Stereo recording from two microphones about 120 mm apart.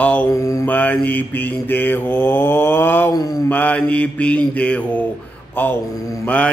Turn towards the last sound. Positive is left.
turn(degrees=10)  # may be behind; listen again after turning